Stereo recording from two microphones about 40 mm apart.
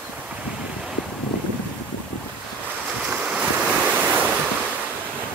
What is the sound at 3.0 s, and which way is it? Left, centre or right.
Waves, right.